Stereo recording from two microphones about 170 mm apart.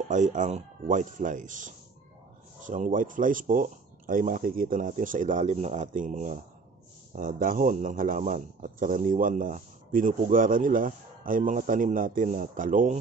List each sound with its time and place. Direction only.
0.1 s a man's voice: 45° right (ahead or behind)